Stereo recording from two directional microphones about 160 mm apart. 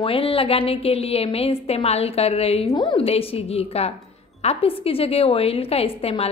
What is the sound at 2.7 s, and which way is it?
Speech, 30° left (ahead or behind).